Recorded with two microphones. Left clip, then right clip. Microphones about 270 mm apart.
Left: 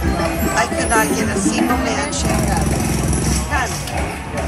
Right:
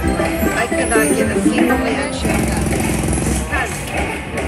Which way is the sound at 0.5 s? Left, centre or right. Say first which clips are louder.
Left 1 dB; centre.